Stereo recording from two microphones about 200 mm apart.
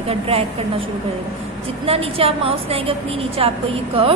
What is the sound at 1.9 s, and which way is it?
A woman's voice, 30° right (ahead or behind).